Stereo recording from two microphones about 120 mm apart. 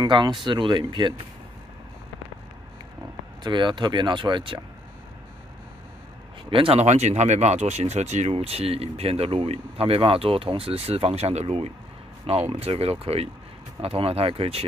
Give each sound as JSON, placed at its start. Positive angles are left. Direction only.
{"t": 0.0, "sound": "speech", "side_deg": -40}
{"t": 3.4, "sound": "speech", "side_deg": -40}
{"t": 6.5, "sound": "speech", "side_deg": -50}
{"t": 6.8, "sound": "speech", "side_deg": -70}